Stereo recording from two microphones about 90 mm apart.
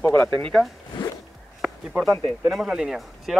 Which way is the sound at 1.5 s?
5° right (ahead or behind).